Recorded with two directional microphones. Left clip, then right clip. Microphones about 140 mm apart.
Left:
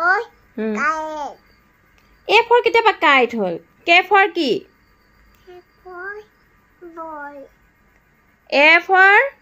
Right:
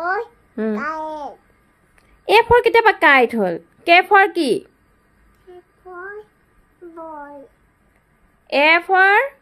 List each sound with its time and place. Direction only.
0.0 s babbling: 15° right (ahead or behind)
0.9 s babbling: 20° right (ahead or behind)
2.2 s a woman's voice: 20° right (ahead or behind)
5.9 s child singing: 5° right (ahead or behind)
7.0 s speech: 5° right (ahead or behind)
8.5 s speech: 5° left (ahead or behind)